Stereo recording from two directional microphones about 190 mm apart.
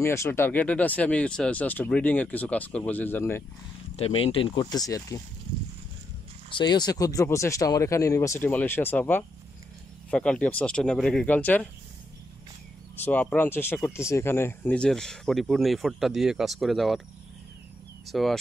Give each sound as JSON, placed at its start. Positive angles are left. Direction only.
{"t": 0.0, "sound": "speech", "side_deg": 15}
{"t": 3.9, "sound": "speech", "side_deg": 30}
{"t": 6.5, "sound": "speech", "side_deg": 20}
{"t": 13.0, "sound": "speech", "side_deg": 10}
{"t": 18.0, "sound": "speech", "side_deg": 0}